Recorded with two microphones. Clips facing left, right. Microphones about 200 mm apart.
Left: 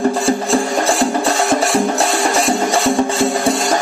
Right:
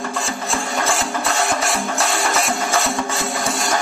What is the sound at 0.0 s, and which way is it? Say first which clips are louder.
Music: left 10 dB; 35° left (ahead or behind).